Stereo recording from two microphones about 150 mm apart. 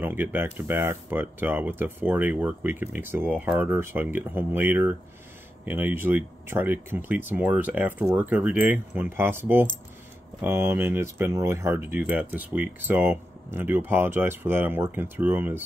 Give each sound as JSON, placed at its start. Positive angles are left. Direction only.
{"t": 0.0, "sound": "speech", "side_deg": -15}